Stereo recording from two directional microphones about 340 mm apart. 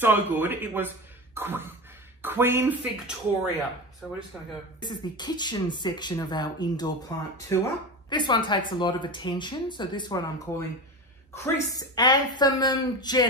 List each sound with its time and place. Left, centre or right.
0.0 s speech: centre
4.7 s speech: centre